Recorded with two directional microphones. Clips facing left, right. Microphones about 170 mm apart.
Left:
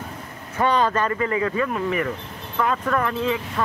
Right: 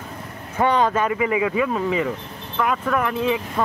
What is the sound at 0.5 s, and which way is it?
Speech, 15° right (ahead or behind).